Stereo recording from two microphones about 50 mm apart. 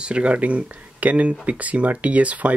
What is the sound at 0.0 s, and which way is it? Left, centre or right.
Speech, right.